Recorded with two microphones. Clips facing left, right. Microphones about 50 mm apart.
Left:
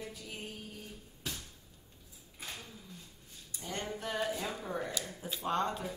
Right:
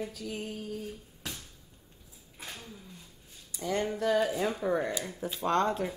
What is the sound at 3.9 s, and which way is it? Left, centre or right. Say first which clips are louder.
Music: right 8 dB; right.